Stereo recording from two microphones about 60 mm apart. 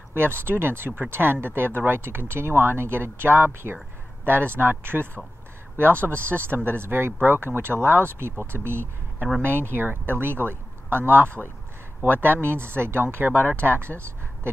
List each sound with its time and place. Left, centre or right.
0.1 s speech: right
9.7 s speech: right